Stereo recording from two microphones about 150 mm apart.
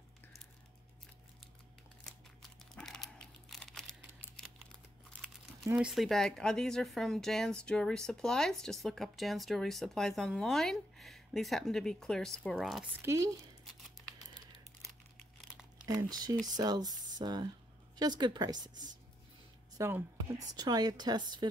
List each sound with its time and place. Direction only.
2.0 s crumpling: 5° left (ahead or behind)
5.8 s speech: centre (ahead or behind)
13.0 s speech: 20° right (ahead or behind)
15.8 s speech: 25° right (ahead or behind)